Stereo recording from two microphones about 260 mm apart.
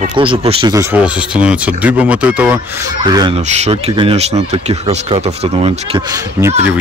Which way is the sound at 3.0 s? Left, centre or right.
Centre.